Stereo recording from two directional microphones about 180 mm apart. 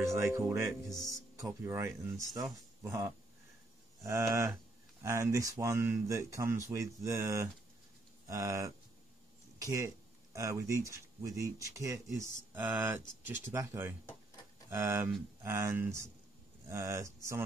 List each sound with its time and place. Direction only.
0.1 s speech: 15° right (ahead or behind)